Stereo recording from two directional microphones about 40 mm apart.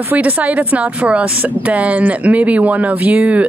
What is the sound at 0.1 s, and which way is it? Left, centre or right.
Speech, right.